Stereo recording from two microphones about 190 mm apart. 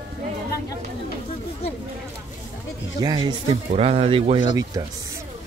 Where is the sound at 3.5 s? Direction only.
30° right (ahead or behind).